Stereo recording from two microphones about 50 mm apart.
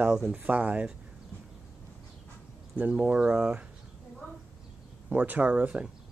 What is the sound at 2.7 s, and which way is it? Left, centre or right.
Speech, right.